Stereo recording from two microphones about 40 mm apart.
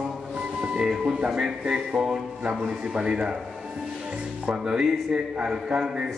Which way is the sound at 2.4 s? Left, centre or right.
Right.